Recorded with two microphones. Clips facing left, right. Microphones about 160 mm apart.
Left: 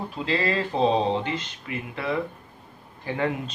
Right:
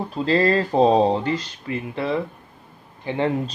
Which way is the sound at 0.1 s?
40° right (ahead or behind).